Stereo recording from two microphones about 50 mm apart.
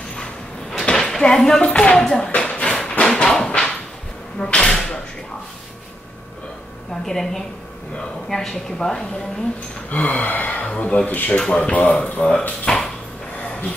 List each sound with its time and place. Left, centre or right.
0.1 s sliding door: centre
0.8 s speech: centre
2.3 s a sound: left
2.8 s a sound: centre
4.4 s speech: centre
7.1 s a woman's voice: centre
9.8 s speech: left
11.1 s speech: left
11.3 s a woman's voice: centre
12.7 s dog: centre